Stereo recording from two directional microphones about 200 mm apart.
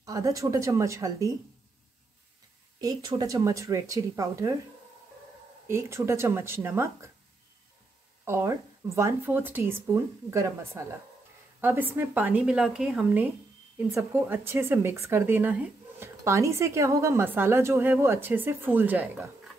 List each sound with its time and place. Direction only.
0.0 s speech: 15° right (ahead or behind)
2.8 s speech: 20° right (ahead or behind)
5.7 s speech: 15° right (ahead or behind)
8.3 s speech: 15° right (ahead or behind)